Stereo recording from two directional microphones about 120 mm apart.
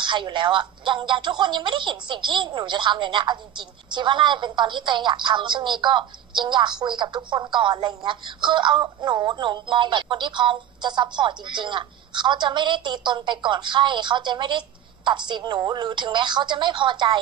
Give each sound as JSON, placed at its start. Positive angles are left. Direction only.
{"t": 0.0, "sound": "speech", "side_deg": -40}